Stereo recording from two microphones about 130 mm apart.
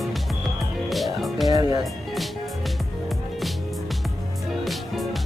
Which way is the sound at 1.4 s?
30° right (ahead or behind).